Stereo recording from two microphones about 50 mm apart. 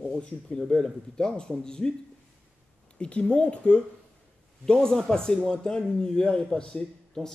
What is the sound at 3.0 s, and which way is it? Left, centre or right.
Speech, left.